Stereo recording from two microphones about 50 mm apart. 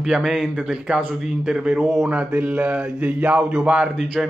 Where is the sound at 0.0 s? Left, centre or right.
Centre.